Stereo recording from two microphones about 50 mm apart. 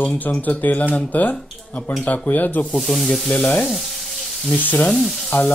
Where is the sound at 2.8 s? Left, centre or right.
Centre.